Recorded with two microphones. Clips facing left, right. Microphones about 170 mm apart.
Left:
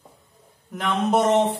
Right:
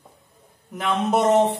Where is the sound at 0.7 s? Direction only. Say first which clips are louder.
Even; centre (ahead or behind).